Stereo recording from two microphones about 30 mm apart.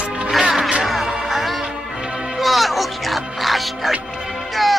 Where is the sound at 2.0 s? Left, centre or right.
Right.